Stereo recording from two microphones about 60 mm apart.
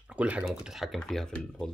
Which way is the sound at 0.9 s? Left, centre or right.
Centre.